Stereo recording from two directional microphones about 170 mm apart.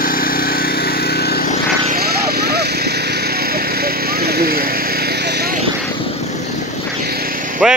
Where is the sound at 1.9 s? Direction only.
65° right (ahead or behind).